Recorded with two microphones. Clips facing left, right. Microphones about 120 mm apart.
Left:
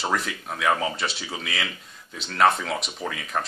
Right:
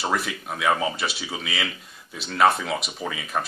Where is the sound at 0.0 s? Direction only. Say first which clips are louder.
Right 1 dB; 5° right (ahead or behind).